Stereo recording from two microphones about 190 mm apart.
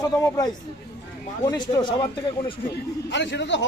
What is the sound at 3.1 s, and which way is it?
Speech, 70° left (ahead or behind).